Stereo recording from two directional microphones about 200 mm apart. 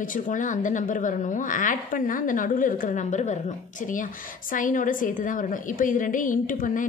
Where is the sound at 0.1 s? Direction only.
40° left (ahead or behind).